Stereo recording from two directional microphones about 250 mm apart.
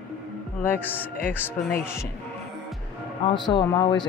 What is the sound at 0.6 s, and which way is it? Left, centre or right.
A man's voice, centre.